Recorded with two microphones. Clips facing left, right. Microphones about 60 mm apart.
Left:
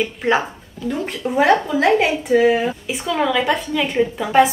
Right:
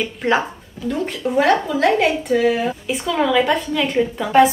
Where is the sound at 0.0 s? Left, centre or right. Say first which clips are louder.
Even; centre.